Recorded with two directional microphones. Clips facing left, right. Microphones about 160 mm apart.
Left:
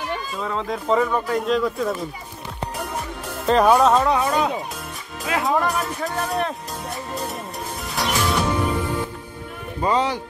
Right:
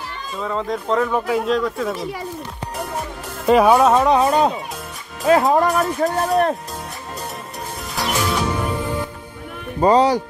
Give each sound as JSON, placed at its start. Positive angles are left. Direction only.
{"t": 0.4, "sound": "speech", "side_deg": 0}
{"t": 3.4, "sound": "speech", "side_deg": -5}
{"t": 4.0, "sound": "speech", "side_deg": -25}
{"t": 5.2, "sound": "speech", "side_deg": -40}
{"t": 7.9, "sound": "music", "side_deg": 0}
{"t": 9.8, "sound": "speech", "side_deg": -35}